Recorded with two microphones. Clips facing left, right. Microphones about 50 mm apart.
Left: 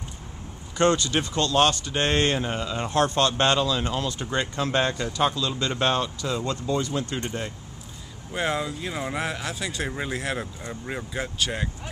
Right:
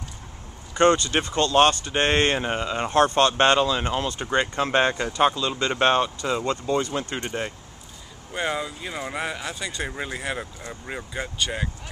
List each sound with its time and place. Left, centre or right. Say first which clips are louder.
0.7 s speech: right 3 dB; right
8.3 s speech: left 1 dB; centre